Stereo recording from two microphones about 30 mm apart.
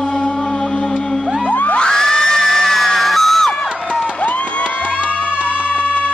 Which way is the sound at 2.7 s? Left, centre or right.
Centre.